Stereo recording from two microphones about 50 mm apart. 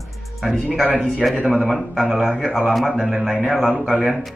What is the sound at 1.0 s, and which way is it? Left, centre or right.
Speech, centre.